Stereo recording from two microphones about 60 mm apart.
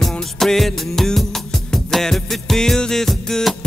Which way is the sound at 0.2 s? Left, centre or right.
Centre.